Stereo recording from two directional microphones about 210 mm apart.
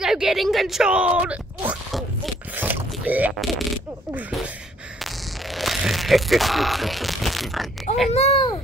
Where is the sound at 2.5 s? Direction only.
10° right (ahead or behind).